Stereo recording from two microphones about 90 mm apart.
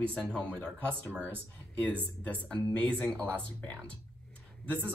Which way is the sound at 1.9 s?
20° right (ahead or behind).